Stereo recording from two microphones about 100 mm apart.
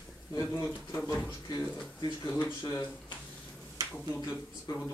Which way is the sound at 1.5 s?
50° left (ahead or behind).